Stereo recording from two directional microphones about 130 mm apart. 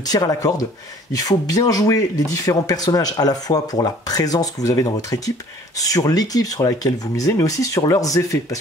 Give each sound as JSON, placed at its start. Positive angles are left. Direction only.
{"t": 0.0, "sound": "speech", "side_deg": 30}